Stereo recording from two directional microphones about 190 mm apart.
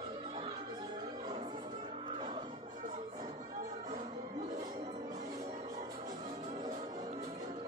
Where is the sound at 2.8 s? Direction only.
40° right (ahead or behind).